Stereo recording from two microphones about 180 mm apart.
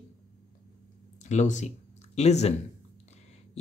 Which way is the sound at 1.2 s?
40° left (ahead or behind).